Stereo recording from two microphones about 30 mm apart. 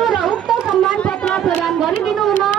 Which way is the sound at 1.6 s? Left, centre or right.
Centre.